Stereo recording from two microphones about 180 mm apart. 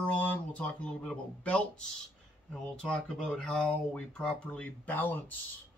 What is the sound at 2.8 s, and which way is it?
Speech, 5° left (ahead or behind).